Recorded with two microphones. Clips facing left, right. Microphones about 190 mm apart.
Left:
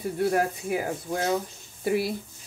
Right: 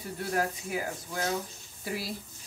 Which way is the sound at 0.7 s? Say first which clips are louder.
Left 6 dB; 55° left (ahead or behind).